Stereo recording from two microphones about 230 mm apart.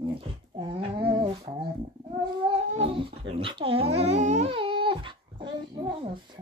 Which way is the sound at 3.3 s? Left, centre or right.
Right.